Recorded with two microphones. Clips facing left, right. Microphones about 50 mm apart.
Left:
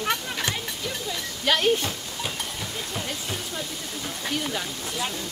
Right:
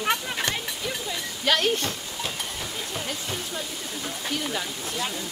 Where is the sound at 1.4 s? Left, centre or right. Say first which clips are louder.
Left 1 dB; centre.